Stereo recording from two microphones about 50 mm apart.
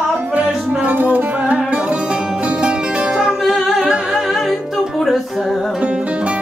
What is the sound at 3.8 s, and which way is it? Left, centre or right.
Humming, centre.